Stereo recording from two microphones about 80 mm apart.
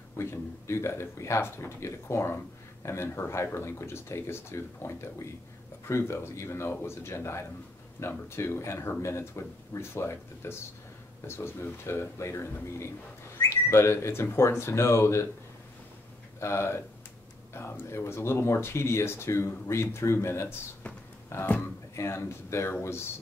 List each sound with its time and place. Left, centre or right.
0.2 s speech: left
16.3 s speech: left